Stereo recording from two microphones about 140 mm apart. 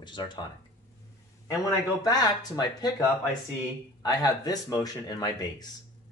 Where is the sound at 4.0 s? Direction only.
25° left (ahead or behind).